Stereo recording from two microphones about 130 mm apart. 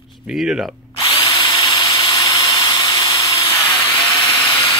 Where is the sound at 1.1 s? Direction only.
35° left (ahead or behind).